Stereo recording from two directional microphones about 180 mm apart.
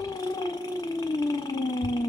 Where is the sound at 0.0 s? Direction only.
20° left (ahead or behind).